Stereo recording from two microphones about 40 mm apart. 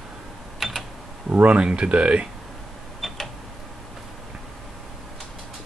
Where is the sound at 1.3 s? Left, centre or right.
Right.